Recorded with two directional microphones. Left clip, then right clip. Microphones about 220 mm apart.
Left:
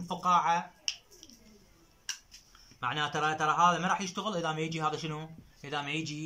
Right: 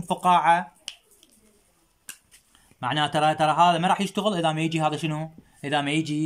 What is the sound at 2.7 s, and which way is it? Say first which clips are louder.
A man's voice: right 8 dB; 45° right (ahead or behind).